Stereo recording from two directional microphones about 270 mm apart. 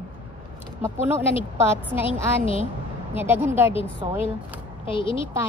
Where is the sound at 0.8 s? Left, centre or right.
Centre.